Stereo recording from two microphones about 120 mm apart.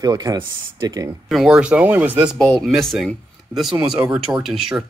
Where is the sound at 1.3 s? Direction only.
Centre (ahead or behind).